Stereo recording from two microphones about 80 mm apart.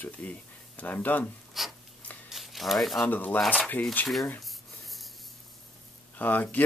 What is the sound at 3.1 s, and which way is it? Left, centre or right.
Speech, left.